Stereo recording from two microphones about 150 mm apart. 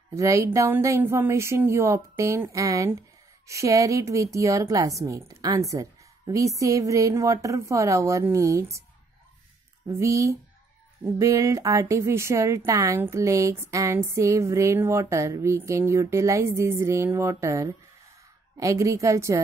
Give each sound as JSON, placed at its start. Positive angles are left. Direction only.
{"t": 0.1, "sound": "a woman's voice", "side_deg": -20}
{"t": 9.8, "sound": "a woman's voice", "side_deg": -20}